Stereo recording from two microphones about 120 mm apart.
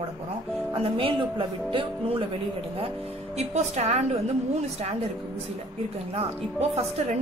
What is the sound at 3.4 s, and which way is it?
Speech, 70° right (ahead or behind).